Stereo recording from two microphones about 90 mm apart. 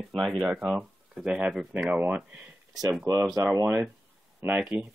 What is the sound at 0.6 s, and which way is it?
Speech, 15° right (ahead or behind).